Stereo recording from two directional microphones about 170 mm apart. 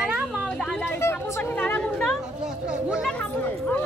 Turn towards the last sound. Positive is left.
turn(degrees=10)  # may be behind; listen again after turning